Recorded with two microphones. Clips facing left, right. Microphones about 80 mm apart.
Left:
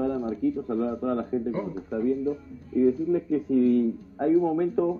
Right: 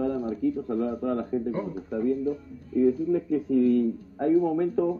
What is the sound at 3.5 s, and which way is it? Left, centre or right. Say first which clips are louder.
Speech: even; centre.